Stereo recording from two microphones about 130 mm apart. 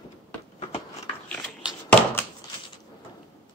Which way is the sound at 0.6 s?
50° left (ahead or behind).